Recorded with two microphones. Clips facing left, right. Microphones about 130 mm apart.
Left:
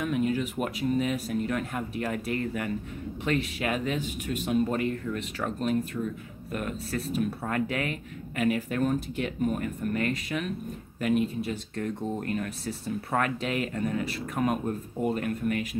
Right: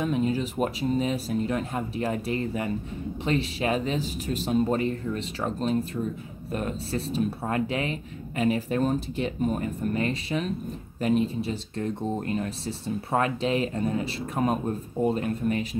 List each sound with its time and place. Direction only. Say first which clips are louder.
0.0 s speech: right 2 dB; 30° right (ahead or behind)